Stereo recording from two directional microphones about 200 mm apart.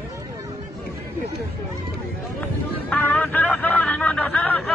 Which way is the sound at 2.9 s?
5° left (ahead or behind).